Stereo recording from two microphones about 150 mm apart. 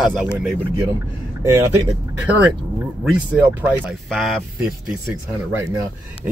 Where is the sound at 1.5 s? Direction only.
20° right (ahead or behind).